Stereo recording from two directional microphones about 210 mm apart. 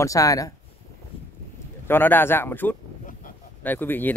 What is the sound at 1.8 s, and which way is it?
Speech, 10° left (ahead or behind).